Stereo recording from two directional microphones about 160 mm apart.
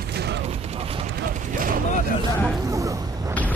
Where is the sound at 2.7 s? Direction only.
20° right (ahead or behind).